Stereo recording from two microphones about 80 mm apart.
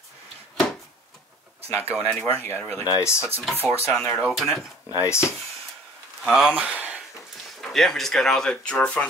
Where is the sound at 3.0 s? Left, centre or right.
Left.